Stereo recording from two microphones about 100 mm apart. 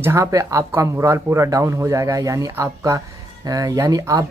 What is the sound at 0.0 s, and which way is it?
Speech, 30° right (ahead or behind).